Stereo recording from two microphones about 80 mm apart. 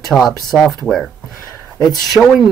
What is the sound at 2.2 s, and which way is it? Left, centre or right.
Speech, centre.